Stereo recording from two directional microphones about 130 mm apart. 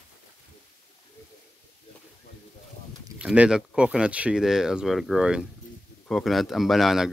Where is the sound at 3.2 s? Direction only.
5° right (ahead or behind).